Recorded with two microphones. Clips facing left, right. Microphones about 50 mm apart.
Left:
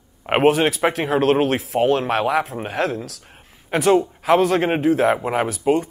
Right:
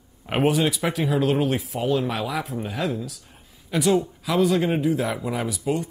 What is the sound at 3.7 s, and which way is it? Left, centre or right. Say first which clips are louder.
Speech: left 4 dB; left.